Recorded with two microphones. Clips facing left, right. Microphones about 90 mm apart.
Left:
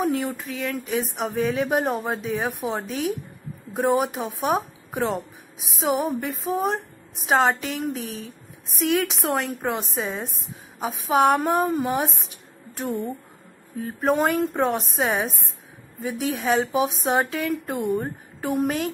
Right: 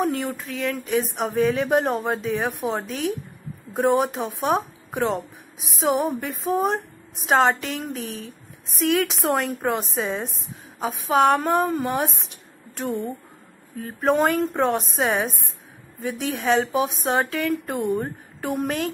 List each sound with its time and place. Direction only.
0.0 s a woman's voice: centre (ahead or behind)
10.8 s a woman's voice: 15° left (ahead or behind)
13.8 s a woman's voice: 5° left (ahead or behind)
17.5 s a woman's voice: centre (ahead or behind)